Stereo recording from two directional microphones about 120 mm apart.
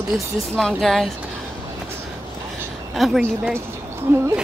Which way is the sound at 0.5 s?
Centre (ahead or behind).